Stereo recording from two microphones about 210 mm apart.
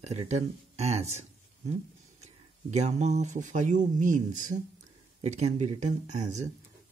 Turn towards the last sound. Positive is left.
turn(degrees=-35)  # may be behind; listen again after turning